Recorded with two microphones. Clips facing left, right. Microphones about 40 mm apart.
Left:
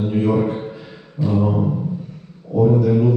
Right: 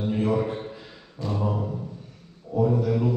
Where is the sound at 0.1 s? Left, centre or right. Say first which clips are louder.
Left 5 dB; left.